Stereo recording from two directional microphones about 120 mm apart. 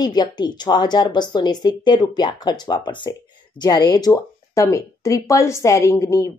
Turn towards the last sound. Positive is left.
turn(degrees=25)  # may be behind; listen again after turning